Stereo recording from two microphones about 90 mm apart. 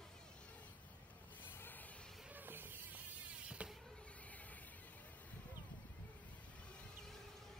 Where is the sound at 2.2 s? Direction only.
20° right (ahead or behind).